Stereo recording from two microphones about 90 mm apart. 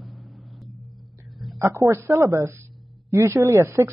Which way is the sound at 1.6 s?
35° right (ahead or behind).